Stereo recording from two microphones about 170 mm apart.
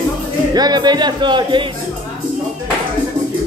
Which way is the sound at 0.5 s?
25° right (ahead or behind).